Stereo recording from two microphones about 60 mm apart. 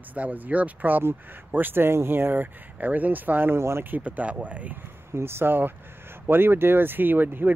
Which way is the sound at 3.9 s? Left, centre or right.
Right.